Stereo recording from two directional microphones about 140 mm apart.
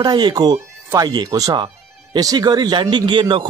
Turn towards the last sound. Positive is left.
turn(degrees=-35)  # may be behind; listen again after turning